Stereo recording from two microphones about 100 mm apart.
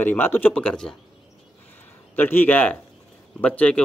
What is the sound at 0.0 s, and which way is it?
Speech, 20° left (ahead or behind).